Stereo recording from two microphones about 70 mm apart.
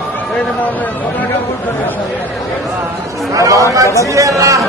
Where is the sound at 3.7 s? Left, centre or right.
Right.